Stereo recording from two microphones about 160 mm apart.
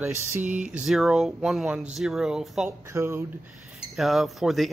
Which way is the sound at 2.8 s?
15° right (ahead or behind).